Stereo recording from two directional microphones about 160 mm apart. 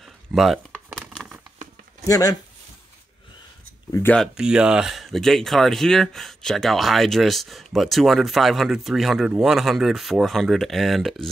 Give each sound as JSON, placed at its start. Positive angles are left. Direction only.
{"t": 0.0, "sound": "a sound", "side_deg": 0}
{"t": 0.9, "sound": "crumpling", "side_deg": 5}
{"t": 2.0, "sound": "speech", "side_deg": 20}
{"t": 3.9, "sound": "speech", "side_deg": 15}
{"t": 4.2, "sound": "speech", "side_deg": -5}